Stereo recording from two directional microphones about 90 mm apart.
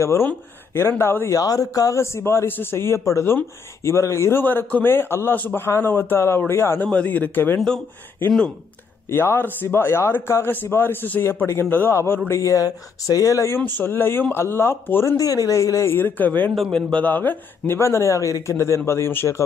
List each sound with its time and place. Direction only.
0.0 s a man's voice: 25° left (ahead or behind)
1.4 s speech: 40° left (ahead or behind)
2.0 s a man's voice: 30° left (ahead or behind)
6.9 s a man's voice: 15° left (ahead or behind)
9.1 s a man's voice: 25° left (ahead or behind)
13.6 s a man's voice: 20° left (ahead or behind)
15.1 s a man's voice: 40° left (ahead or behind)